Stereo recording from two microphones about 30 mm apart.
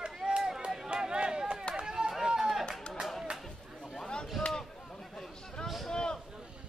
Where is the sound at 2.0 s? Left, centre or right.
Right.